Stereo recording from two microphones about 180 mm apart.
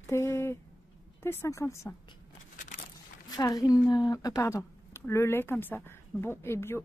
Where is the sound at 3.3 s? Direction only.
20° left (ahead or behind).